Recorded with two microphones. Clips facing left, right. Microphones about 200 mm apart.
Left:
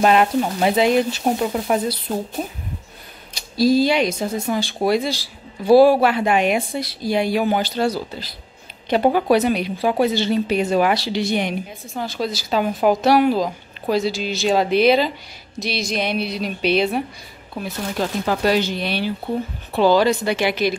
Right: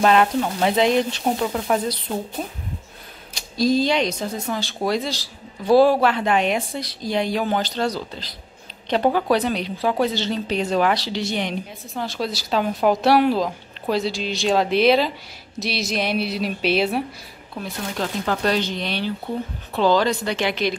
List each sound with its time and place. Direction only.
0.0 s a woman's voice: 10° left (ahead or behind)
3.5 s a woman's voice: 5° left (ahead or behind)
11.9 s speech: centre (ahead or behind)
17.6 s a woman's voice: 10° left (ahead or behind)